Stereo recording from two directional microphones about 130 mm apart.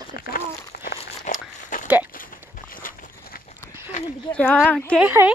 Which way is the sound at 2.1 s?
90° left.